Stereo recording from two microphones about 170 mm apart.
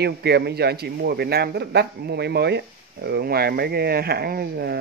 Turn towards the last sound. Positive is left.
turn(degrees=-70)  # may be behind; listen again after turning